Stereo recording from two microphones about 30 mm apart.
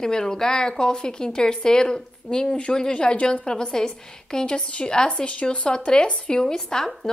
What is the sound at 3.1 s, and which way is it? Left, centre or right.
A woman's voice, left.